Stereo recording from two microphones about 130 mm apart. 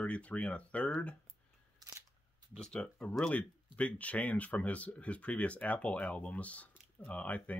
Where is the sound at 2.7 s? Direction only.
5° left (ahead or behind).